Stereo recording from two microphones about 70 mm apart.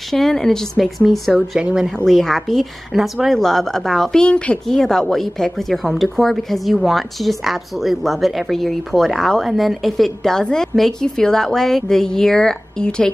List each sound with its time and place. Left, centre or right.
0.1 s a woman's voice: centre
1.6 s speech: centre
2.0 s a woman's voice: centre